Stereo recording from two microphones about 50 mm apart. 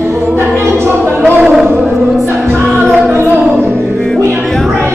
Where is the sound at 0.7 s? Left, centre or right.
Right.